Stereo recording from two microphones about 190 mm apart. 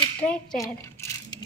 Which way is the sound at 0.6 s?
15° left (ahead or behind).